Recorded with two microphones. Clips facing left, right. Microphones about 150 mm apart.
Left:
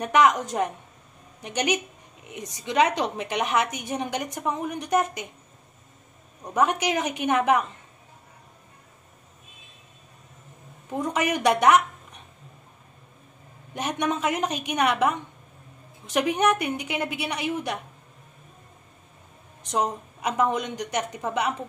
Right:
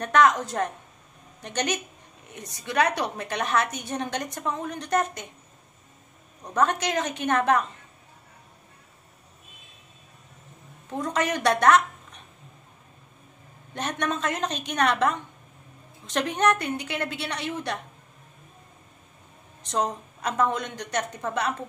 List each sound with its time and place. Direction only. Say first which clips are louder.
0.0 s a woman's voice: even; 15° left (ahead or behind)
6.4 s a woman's voice: left 1 dB; 10° left (ahead or behind)
10.9 s a woman's voice: left 1 dB; 15° left (ahead or behind)
13.7 s a woman's voice: left 2 dB; 10° left (ahead or behind)
19.7 s a woman's voice: left 1 dB; 10° left (ahead or behind)